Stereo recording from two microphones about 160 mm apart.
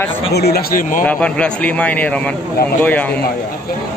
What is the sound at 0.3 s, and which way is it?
Speech, 80° left.